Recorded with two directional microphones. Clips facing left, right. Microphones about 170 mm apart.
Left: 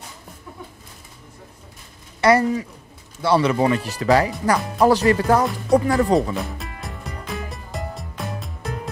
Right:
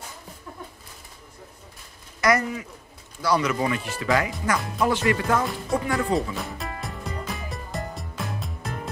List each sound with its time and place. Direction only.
2.2 s speech: 30° left (ahead or behind)
6.3 s music: centre (ahead or behind)